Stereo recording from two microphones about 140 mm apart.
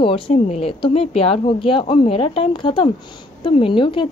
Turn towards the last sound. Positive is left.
turn(degrees=35)  # may be behind; listen again after turning